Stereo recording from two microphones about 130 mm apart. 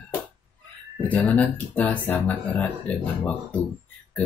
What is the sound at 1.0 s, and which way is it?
Speech, 10° left (ahead or behind).